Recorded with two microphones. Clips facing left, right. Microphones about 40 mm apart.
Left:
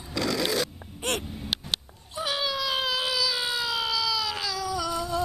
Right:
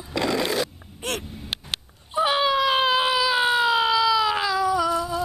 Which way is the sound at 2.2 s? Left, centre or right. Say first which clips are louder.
Right 8 dB; right.